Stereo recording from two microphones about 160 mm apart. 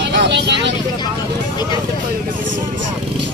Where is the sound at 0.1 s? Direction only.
90° right.